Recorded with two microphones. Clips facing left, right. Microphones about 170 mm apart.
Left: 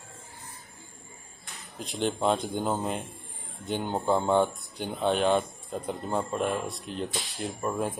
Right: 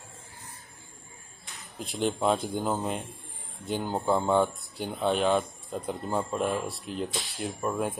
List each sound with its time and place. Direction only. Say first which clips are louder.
1.8 s speech: even; centre (ahead or behind)